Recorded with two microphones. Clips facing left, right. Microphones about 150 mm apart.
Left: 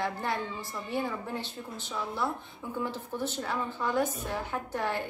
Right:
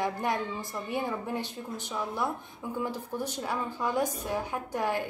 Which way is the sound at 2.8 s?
15° right (ahead or behind).